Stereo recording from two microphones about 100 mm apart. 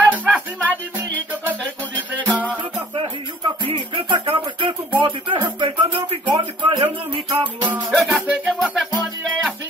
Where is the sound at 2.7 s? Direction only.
65° right (ahead or behind).